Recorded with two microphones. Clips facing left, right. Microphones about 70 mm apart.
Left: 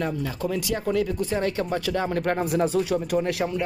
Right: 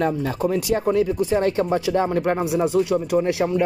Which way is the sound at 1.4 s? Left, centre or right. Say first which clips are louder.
Right 5 dB; right.